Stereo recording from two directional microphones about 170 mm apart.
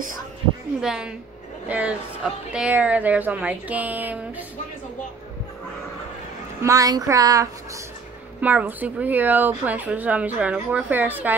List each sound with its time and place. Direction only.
0.7 s a woman's voice: 5° right (ahead or behind)
6.6 s a sound: 20° right (ahead or behind)
8.4 s speech: 10° right (ahead or behind)